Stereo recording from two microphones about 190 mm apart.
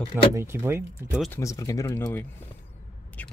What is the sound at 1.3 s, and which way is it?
Speech, 15° left (ahead or behind).